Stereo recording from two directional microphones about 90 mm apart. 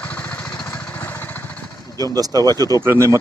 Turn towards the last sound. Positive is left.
turn(degrees=-30)  # may be behind; listen again after turning